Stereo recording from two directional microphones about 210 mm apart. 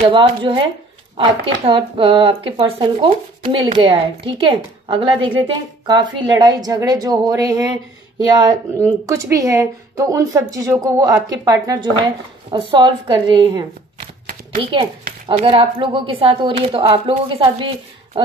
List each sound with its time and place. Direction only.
0.1 s speech: 25° right (ahead or behind)